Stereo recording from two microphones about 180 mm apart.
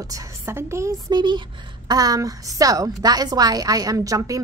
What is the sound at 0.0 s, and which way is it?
A woman's voice, 15° right (ahead or behind).